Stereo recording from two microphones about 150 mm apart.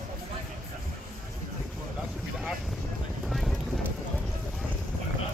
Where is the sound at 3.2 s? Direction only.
Centre (ahead or behind).